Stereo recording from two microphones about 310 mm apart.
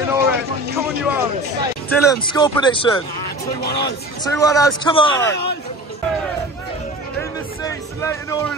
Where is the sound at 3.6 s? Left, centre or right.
Left.